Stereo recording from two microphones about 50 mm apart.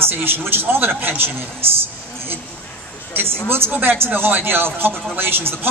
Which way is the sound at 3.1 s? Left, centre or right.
Right.